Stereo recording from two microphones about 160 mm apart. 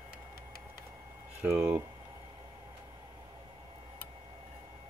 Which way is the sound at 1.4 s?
15° right (ahead or behind).